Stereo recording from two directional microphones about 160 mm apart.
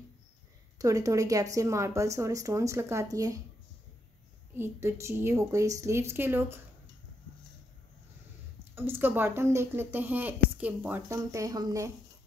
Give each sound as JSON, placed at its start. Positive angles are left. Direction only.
{"t": 0.7, "sound": "speech", "side_deg": -20}
{"t": 4.6, "sound": "speech", "side_deg": -15}
{"t": 8.7, "sound": "speech", "side_deg": -15}